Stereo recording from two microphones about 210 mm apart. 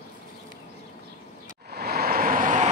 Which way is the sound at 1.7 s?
50° right (ahead or behind).